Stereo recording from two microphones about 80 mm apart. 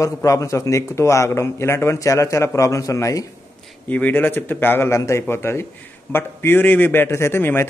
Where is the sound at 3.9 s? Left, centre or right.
Left.